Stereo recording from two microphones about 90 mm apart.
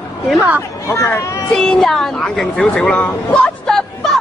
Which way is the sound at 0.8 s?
30° left (ahead or behind).